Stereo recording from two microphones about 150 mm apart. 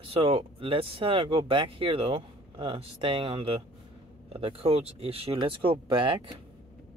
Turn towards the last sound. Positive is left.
turn(degrees=-35)  # may be behind; listen again after turning